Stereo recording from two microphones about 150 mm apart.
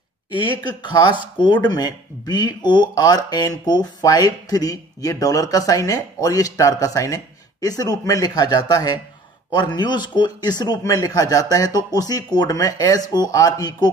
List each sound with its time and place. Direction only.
0.3 s speech: 30° left (ahead or behind)